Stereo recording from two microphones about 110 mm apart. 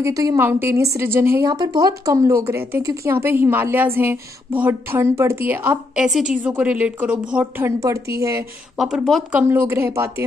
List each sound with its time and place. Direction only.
0.0 s a woman's voice: 30° right (ahead or behind)
0.4 s a woman's voice: 20° right (ahead or behind)
1.5 s a woman's voice: 35° right (ahead or behind); by 7.6 s 10° right (ahead or behind)
7.6 s a woman's voice: 30° right (ahead or behind)
8.7 s speech: 5° right (ahead or behind)
9.3 s a woman's voice: 15° right (ahead or behind)